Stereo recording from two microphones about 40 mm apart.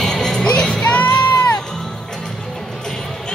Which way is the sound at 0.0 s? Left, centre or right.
Centre.